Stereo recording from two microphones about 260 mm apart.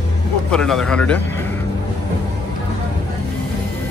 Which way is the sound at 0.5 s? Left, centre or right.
Centre.